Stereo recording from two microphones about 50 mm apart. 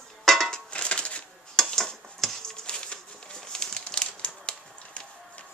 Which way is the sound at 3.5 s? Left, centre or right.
Centre.